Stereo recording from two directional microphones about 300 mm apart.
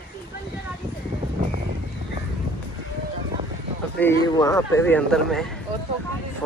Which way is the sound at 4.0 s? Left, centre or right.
Centre.